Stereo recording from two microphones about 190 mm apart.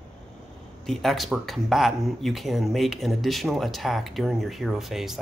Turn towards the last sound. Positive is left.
turn(degrees=0)  # may be behind; listen again after turning